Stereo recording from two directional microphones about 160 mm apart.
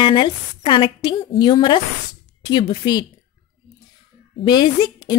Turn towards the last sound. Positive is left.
turn(degrees=25)  # may be behind; listen again after turning